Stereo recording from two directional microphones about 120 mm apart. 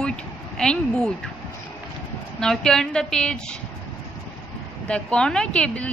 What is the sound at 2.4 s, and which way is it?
Speech, 5° left (ahead or behind).